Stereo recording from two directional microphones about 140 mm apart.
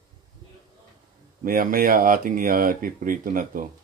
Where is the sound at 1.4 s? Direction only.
90° right.